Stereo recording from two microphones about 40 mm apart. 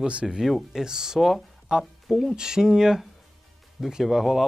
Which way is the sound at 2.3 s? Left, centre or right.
Centre.